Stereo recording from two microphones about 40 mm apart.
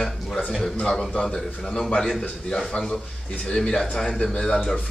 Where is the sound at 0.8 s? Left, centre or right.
Centre.